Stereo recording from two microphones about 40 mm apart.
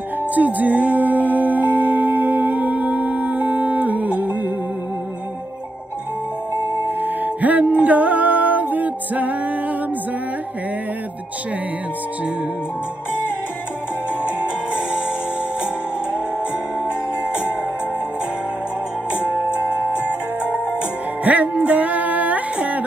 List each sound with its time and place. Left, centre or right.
0.3 s music: right
6.5 s music: left
7.0 s music: right
14.2 s music: right
19.2 s music: right
21.2 s music: right